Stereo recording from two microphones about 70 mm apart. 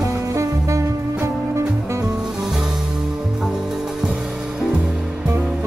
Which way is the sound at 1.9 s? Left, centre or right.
Right.